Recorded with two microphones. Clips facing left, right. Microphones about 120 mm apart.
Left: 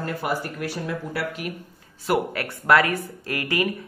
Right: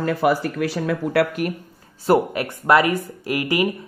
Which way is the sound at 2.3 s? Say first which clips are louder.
Right 2 dB; 20° right (ahead or behind).